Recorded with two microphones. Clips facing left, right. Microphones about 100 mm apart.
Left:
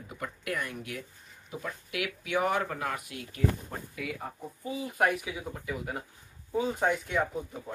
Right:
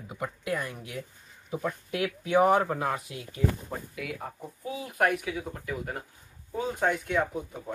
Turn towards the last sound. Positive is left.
turn(degrees=0)  # may be behind; listen again after turning